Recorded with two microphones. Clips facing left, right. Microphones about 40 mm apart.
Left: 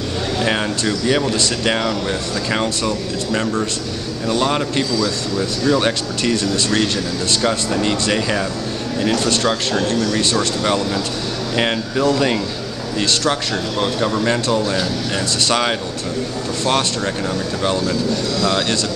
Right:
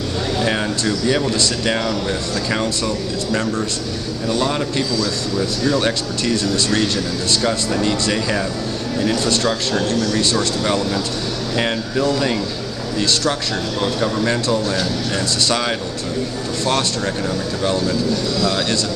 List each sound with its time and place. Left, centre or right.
0.4 s speech: centre
4.3 s speech: centre
6.5 s speech: left
7.8 s speech: left
9.1 s speech: left
13.0 s speech: left
13.9 s speech: centre
14.6 s speech: centre
15.4 s speech: left
16.6 s speech: centre
18.4 s speech: centre